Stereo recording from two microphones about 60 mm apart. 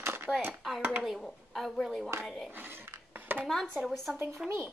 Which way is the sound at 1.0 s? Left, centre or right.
Centre.